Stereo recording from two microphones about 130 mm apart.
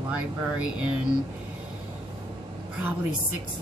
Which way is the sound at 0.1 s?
10° right (ahead or behind).